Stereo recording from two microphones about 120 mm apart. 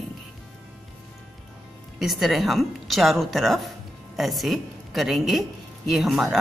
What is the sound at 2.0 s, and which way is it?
A woman's voice, centre (ahead or behind).